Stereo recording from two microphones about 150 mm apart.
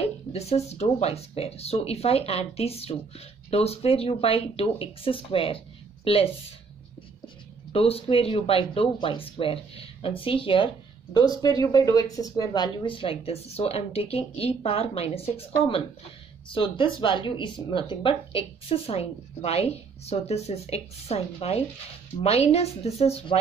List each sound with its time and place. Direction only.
0.3 s speech: 45° left (ahead or behind)
7.7 s speech: 40° left (ahead or behind)
11.1 s speech: 25° left (ahead or behind); by 23.4 s 45° left (ahead or behind)